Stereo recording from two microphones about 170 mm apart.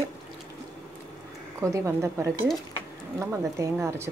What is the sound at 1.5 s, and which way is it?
Speech, 20° right (ahead or behind).